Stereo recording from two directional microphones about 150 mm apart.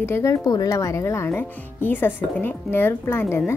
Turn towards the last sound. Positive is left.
turn(degrees=15)  # may be behind; listen again after turning